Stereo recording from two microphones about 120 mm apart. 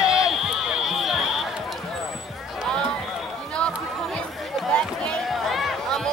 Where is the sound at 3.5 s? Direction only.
5° left (ahead or behind).